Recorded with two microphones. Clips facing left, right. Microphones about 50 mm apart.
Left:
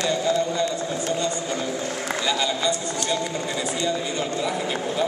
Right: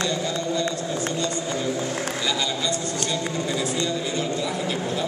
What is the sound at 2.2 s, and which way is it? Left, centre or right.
A man's voice, centre.